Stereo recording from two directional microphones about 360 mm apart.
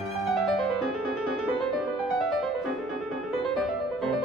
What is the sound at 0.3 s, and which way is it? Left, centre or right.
Music, centre.